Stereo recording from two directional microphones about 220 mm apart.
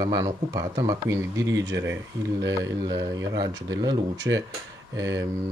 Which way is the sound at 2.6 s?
15° right (ahead or behind).